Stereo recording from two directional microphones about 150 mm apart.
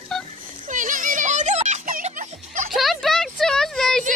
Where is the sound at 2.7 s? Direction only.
Centre (ahead or behind).